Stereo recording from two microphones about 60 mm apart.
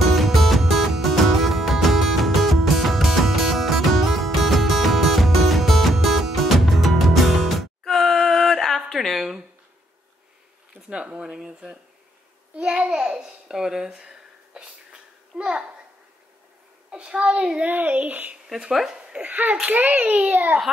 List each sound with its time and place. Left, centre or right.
0.0 s music: centre
10.9 s speech: centre
12.5 s babbling: centre
16.9 s speech: centre
17.6 s speech: right
18.7 s speech: centre
19.2 s speech: right